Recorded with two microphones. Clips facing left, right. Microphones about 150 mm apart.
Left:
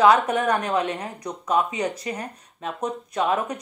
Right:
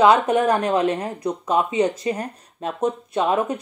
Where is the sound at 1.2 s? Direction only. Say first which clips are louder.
Left 1 dB; 25° right (ahead or behind).